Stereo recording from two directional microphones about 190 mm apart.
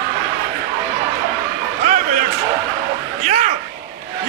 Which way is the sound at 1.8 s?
40° right (ahead or behind).